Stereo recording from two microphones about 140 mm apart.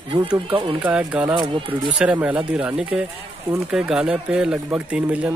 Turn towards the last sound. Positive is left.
turn(degrees=-10)  # may be behind; listen again after turning